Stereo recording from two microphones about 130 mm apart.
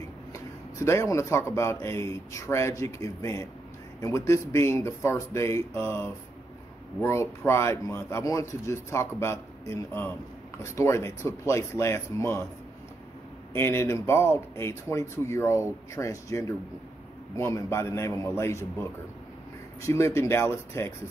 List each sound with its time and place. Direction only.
0.3 s speech: 25° left (ahead or behind)
13.5 s speech: 20° left (ahead or behind)